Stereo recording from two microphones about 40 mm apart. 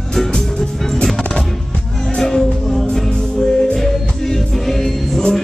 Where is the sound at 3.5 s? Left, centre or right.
Centre.